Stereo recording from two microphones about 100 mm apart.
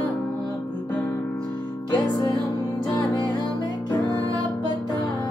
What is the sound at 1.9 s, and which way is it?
Music, 40° left (ahead or behind).